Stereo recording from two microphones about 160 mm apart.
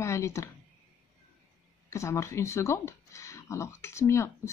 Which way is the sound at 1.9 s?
20° left (ahead or behind).